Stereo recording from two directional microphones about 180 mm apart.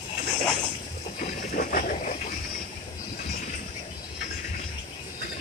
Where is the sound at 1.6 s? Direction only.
50° left (ahead or behind).